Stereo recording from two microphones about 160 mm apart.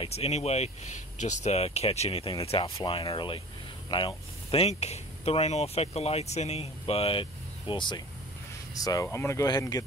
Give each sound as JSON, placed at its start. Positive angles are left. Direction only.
{"t": 0.0, "sound": "speech", "side_deg": 40}
{"t": 8.8, "sound": "speech", "side_deg": 20}